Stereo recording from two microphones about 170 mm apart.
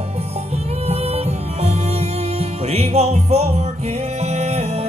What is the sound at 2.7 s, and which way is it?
Music, 40° right (ahead or behind).